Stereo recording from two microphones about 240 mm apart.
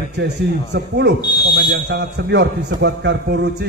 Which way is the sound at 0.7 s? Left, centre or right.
Right.